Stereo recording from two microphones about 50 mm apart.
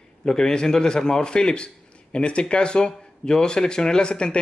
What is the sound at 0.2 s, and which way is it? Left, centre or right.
Speech, centre.